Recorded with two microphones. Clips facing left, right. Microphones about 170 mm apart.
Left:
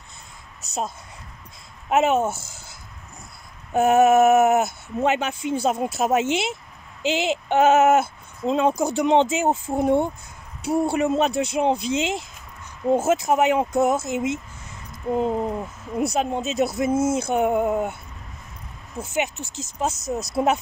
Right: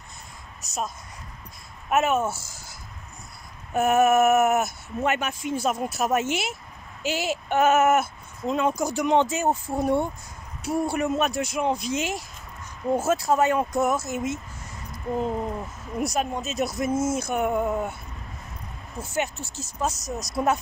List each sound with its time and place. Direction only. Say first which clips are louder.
1.9 s speech: left 3 dB; 25° left (ahead or behind)
3.7 s speech: left 4 dB; 25° left (ahead or behind)
16.0 s speech: left 4 dB; 25° left (ahead or behind)
19.1 s speech: left 2 dB; 20° left (ahead or behind)